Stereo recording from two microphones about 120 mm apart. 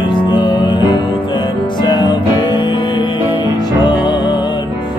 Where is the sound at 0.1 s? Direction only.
40° left (ahead or behind).